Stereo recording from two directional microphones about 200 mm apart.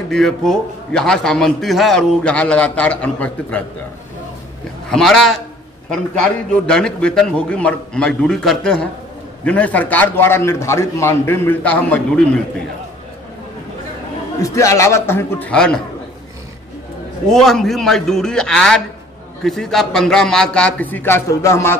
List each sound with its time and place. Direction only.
0.1 s a man's voice: centre (ahead or behind)
4.8 s a man's voice: centre (ahead or behind)
14.4 s a man's voice: 15° left (ahead or behind)
17.3 s a man's voice: centre (ahead or behind)